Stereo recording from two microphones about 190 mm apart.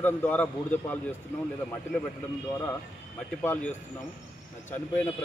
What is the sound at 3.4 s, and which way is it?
Speech, 5° left (ahead or behind).